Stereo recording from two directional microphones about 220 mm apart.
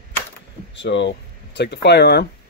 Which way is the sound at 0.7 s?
55° left (ahead or behind).